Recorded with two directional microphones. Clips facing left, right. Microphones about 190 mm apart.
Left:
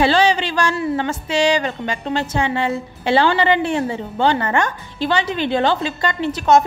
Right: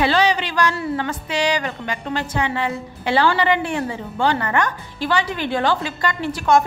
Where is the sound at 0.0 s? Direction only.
30° left (ahead or behind).